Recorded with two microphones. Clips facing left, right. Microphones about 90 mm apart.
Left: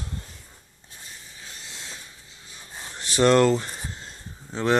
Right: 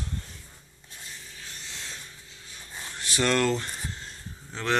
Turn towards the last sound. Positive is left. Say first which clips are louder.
# left 5 dB
turn(degrees=20)  # may be behind; listen again after turning